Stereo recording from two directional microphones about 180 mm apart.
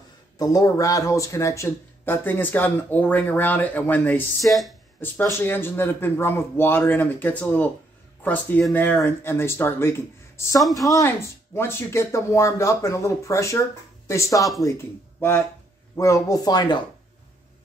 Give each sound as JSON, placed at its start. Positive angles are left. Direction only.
{"t": 0.4, "sound": "speech", "side_deg": 20}
{"t": 5.0, "sound": "speech", "side_deg": 10}